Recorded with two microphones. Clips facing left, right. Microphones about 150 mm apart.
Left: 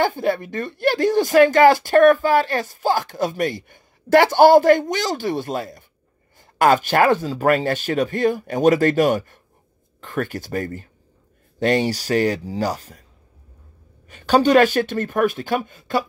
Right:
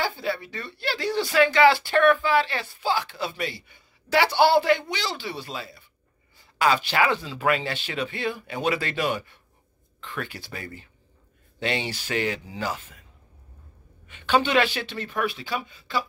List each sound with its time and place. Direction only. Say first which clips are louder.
0.0 s speech: left 8 dB; 50° left (ahead or behind)
14.0 s speech: left 7 dB; 40° left (ahead or behind)